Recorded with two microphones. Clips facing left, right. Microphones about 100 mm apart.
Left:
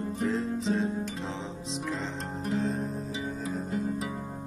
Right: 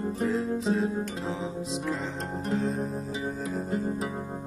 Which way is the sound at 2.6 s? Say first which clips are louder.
Right 1 dB; centre (ahead or behind).